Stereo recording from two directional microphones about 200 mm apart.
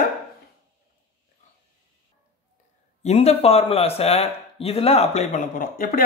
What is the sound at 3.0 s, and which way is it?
Speech, 30° left (ahead or behind).